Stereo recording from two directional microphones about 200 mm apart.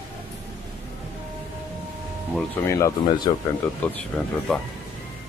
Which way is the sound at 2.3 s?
15° left (ahead or behind).